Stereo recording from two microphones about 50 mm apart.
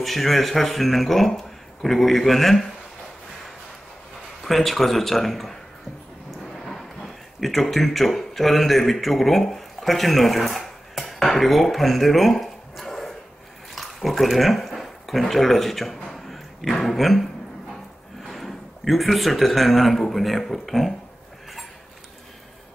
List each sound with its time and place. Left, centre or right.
0.0 s speech: centre
4.4 s speech: centre